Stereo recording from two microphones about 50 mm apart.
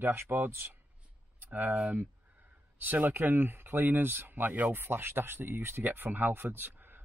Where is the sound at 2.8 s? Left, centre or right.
Right.